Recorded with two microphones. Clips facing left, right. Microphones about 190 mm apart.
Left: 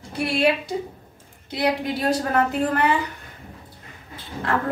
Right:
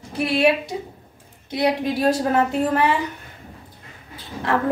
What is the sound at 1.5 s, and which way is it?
Speech, 20° right (ahead or behind).